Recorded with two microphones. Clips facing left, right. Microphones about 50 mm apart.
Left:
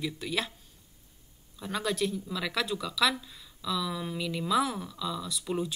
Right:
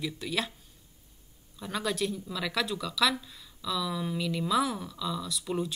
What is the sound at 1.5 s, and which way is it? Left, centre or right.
Speech, centre.